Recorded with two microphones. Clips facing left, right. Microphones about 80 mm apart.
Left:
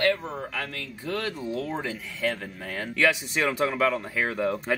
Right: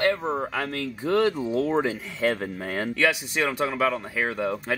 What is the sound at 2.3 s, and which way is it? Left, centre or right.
Speech, right.